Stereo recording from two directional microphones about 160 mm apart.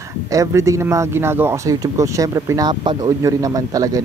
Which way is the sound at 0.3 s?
20° right (ahead or behind).